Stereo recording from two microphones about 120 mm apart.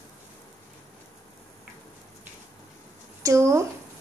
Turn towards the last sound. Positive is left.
turn(degrees=-25)  # may be behind; listen again after turning